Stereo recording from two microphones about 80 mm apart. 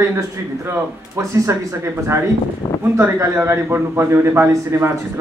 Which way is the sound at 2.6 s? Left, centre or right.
Left.